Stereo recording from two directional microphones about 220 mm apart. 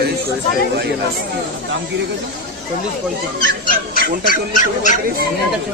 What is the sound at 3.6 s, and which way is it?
Speech, 40° left (ahead or behind).